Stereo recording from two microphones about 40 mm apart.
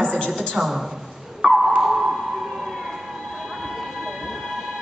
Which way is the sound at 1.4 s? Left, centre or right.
Right.